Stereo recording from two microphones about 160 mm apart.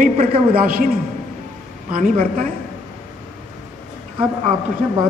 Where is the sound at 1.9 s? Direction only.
55° right (ahead or behind).